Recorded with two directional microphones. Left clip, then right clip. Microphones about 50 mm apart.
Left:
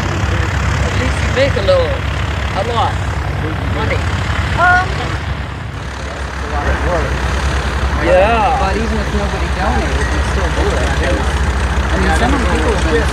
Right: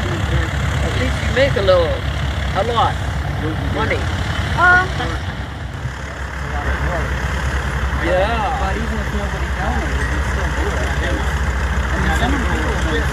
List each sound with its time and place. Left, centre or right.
0.9 s vehicle: left
2.5 s speech: centre
8.0 s speech: left